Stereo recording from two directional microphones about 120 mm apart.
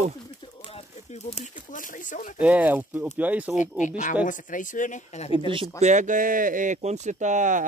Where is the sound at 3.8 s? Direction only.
90° left.